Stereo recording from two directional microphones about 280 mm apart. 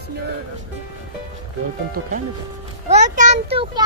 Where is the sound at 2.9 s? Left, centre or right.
Right.